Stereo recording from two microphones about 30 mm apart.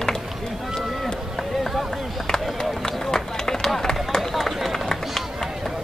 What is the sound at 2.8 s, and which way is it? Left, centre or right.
Run, centre.